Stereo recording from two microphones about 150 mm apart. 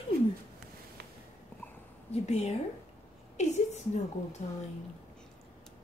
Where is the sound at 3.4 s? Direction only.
50° left (ahead or behind).